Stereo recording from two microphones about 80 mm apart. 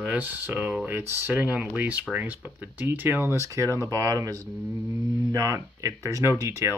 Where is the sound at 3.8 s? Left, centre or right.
Right.